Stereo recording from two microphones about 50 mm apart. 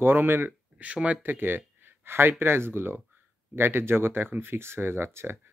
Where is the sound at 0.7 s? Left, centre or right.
Right.